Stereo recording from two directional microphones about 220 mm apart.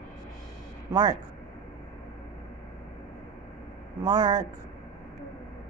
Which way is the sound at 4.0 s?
20° right (ahead or behind).